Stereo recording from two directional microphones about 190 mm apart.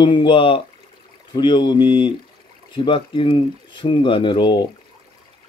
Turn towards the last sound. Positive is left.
turn(degrees=25)  # may be behind; listen again after turning